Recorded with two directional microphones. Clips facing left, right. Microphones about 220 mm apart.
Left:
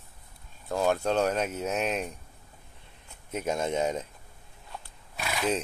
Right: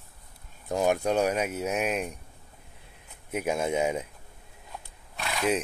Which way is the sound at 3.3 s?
10° right (ahead or behind).